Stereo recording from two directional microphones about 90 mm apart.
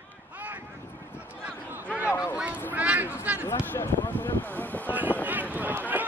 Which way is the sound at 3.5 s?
25° left (ahead or behind).